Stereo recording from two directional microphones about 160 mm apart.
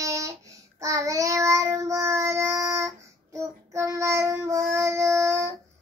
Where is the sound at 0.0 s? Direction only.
20° right (ahead or behind).